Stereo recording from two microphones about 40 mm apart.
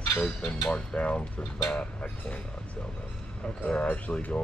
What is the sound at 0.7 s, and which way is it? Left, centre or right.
Speech, left.